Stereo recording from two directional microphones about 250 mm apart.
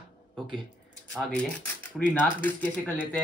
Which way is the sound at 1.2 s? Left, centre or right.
Centre.